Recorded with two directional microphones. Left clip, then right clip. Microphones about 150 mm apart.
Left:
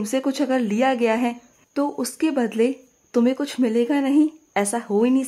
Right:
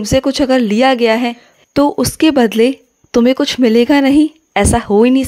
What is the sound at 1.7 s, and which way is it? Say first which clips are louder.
Speech: right 12 dB; 40° right (ahead or behind).